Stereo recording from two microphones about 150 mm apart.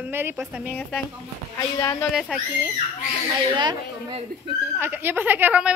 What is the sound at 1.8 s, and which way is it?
Speech, 20° left (ahead or behind).